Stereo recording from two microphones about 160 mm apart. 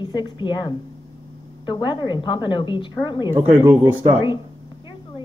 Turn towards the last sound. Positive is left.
turn(degrees=-15)  # may be behind; listen again after turning